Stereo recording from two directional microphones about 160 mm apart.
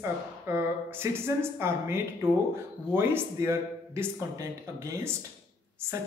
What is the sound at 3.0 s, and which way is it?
A woman's voice, 15° right (ahead or behind).